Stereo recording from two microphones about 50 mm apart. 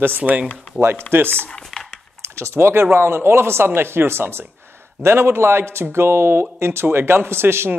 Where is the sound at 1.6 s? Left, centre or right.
Centre.